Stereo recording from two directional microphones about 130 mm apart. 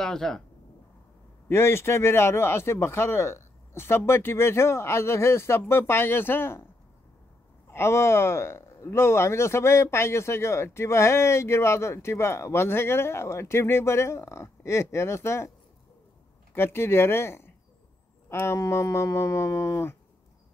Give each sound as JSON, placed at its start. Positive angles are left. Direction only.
{"t": 0.0, "sound": "speech", "side_deg": 5}
{"t": 1.5, "sound": "speech", "side_deg": 20}
{"t": 7.7, "sound": "speech", "side_deg": 20}
{"t": 16.5, "sound": "speech", "side_deg": 20}